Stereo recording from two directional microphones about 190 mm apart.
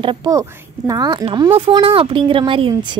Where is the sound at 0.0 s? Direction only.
25° right (ahead or behind).